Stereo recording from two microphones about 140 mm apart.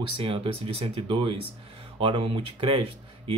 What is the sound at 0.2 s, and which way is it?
A man's voice, 40° right (ahead or behind).